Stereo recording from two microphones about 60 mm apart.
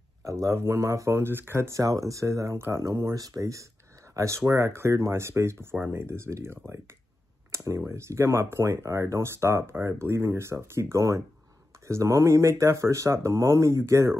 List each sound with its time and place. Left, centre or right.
0.2 s a man's voice: right
1.1 s speech: right
1.7 s speech: right